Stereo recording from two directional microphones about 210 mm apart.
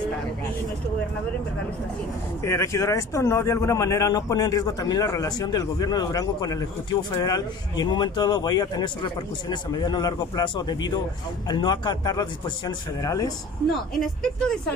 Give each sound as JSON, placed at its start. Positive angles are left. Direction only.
{"t": 2.4, "sound": "a man's voice", "side_deg": 15}
{"t": 13.9, "sound": "speech", "side_deg": 0}